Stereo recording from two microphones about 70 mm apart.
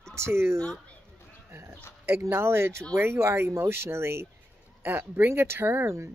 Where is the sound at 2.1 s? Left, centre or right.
Right.